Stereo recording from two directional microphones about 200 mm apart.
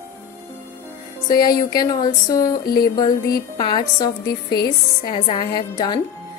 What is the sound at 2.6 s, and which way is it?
Music, 50° left (ahead or behind).